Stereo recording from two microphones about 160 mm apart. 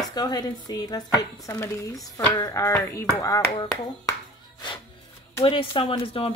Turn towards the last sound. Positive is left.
turn(degrees=35)  # may be behind; listen again after turning